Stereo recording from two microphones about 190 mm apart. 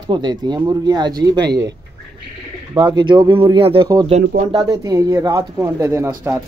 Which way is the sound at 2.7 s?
25° right (ahead or behind).